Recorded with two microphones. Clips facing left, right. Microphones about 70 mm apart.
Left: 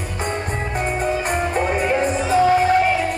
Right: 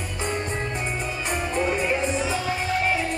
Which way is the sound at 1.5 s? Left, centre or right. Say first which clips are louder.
Left 3 dB; left.